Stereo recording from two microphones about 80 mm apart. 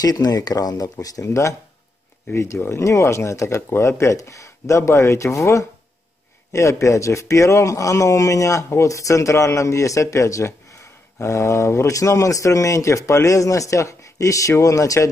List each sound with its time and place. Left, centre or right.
0.0 s a man's voice: left